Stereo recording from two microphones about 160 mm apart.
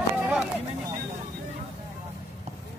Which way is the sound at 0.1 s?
10° right (ahead or behind).